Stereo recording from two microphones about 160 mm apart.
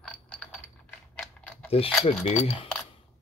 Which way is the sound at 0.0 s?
5° left (ahead or behind).